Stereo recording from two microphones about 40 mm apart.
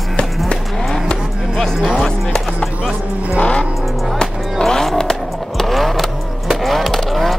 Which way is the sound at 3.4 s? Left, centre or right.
Left.